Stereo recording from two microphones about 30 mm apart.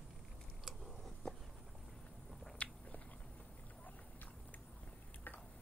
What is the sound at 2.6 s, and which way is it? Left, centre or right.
Biting, left.